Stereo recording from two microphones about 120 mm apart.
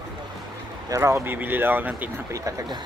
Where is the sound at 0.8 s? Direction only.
25° right (ahead or behind).